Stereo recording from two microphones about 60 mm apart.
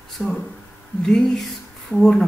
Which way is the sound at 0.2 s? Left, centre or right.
Centre.